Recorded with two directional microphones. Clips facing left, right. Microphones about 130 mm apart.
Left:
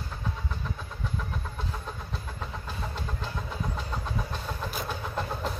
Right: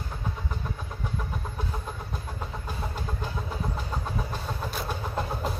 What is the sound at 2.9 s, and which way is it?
Vehicle, 10° right (ahead or behind).